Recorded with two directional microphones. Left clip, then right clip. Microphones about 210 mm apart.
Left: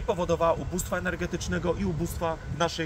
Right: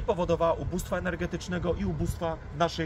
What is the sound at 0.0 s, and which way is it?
Speech, 10° right (ahead or behind).